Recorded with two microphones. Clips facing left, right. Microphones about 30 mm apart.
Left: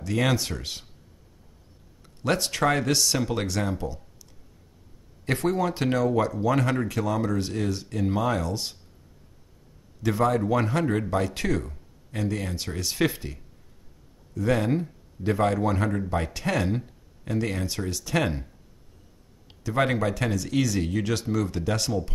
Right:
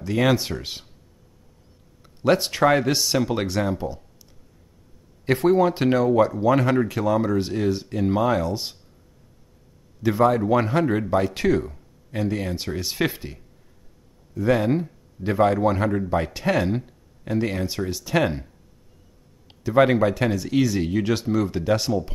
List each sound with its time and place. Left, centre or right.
0.3 s speech: centre
2.0 s speech: centre
5.2 s speech: centre
10.0 s speech: centre